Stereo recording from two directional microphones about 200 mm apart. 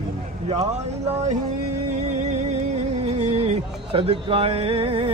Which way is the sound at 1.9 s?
35° right (ahead or behind).